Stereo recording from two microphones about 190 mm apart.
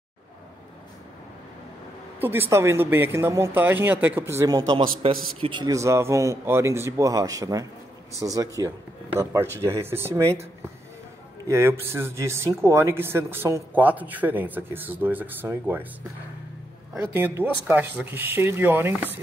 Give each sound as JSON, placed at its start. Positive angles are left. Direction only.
{"t": 2.1, "sound": "speech", "side_deg": -10}
{"t": 11.4, "sound": "speech", "side_deg": -15}
{"t": 16.9, "sound": "speech", "side_deg": -10}